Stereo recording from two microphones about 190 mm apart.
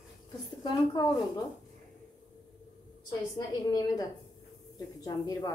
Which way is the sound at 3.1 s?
20° left (ahead or behind).